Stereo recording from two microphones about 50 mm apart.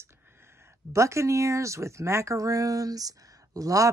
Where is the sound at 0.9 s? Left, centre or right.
Right.